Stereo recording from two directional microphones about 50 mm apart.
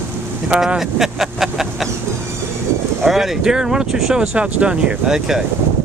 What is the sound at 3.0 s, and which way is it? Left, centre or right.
Speech, centre.